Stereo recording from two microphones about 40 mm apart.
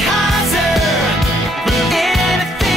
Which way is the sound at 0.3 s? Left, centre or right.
Centre.